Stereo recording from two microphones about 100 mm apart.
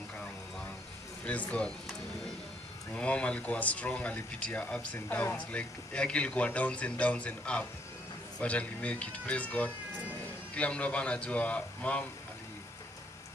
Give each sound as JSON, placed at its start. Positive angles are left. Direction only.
{"t": 1.2, "sound": "speech", "side_deg": 15}
{"t": 2.9, "sound": "speech", "side_deg": 10}